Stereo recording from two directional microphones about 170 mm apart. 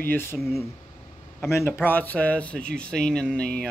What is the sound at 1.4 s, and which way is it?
Speech, 15° left (ahead or behind).